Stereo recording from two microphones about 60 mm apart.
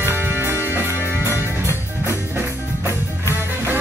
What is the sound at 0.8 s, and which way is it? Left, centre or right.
Music, left.